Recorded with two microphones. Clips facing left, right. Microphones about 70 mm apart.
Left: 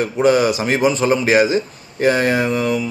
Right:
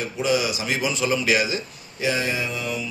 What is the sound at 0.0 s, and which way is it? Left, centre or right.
Speech, left.